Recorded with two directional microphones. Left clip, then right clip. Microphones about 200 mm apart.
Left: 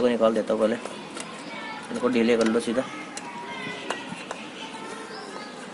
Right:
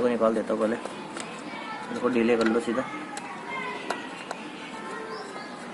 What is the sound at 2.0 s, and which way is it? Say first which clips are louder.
Speech: left 2 dB; 30° left (ahead or behind).